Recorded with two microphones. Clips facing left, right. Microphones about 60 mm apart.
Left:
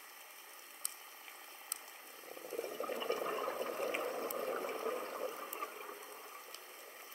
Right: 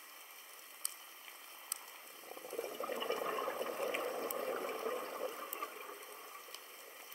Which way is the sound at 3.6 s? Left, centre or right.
Left.